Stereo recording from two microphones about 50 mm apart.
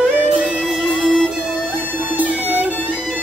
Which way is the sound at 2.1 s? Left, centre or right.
Right.